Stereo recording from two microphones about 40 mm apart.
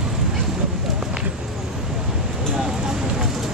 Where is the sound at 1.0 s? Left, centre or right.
Centre.